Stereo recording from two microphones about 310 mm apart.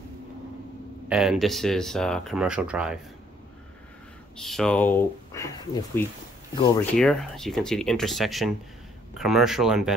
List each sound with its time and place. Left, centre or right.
1.0 s speech: centre
4.4 s speech: centre
7.0 s speech: centre